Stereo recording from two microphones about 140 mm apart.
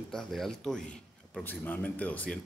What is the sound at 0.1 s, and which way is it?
A man's voice, centre (ahead or behind).